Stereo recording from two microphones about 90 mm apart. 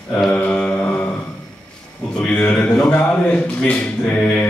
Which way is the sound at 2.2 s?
10° left (ahead or behind).